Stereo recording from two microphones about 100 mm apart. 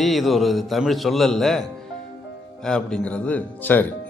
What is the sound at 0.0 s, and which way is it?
A man's voice, centre (ahead or behind).